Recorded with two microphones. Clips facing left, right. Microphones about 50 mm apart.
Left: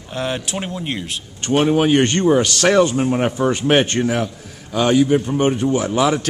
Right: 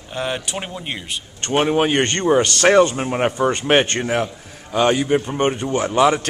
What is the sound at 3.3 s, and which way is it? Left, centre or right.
Speech, centre.